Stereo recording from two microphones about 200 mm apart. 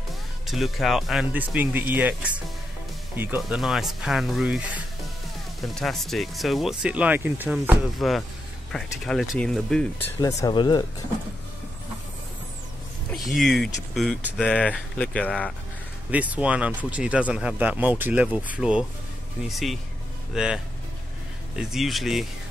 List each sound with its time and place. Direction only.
0.1 s speech: centre (ahead or behind)
3.2 s speech: 5° right (ahead or behind)
10.2 s speech: 20° left (ahead or behind)
13.1 s speech: centre (ahead or behind)
16.1 s speech: 5° right (ahead or behind)